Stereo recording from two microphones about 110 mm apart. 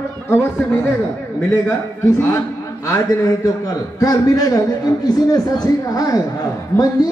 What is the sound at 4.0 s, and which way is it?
A man's voice, 35° left (ahead or behind).